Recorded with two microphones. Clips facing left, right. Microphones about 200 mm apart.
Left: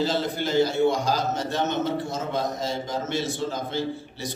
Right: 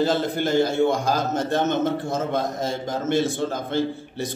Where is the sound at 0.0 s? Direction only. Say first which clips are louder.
Right 4 dB; 50° right (ahead or behind).